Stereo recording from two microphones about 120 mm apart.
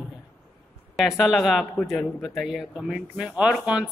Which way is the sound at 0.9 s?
Centre (ahead or behind).